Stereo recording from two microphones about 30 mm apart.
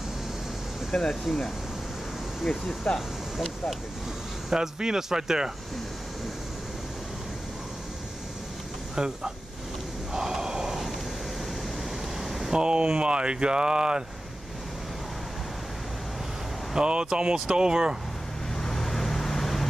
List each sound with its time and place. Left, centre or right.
1.2 s speech: centre
2.9 s speech: left
3.3 s speech: centre
4.5 s speech: right
8.9 s speech: right
10.1 s a sound: centre
10.7 s a sound: centre
12.2 s a sound: centre
12.5 s speech: right
16.7 s speech: right
18.6 s vehicle: centre